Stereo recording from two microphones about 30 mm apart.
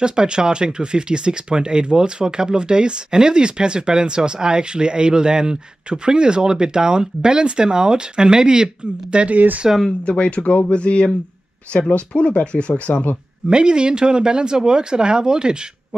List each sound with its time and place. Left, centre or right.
0.0 s speech: right
9.3 s speech: right
10.0 s speech: left
13.5 s speech: right